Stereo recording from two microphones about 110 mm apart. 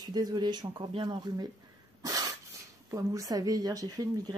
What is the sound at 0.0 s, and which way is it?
Speech, 40° right (ahead or behind).